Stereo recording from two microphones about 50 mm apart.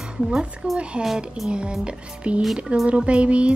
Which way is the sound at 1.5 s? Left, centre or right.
Centre.